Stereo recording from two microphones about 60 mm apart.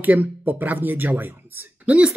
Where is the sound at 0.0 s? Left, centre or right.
Right.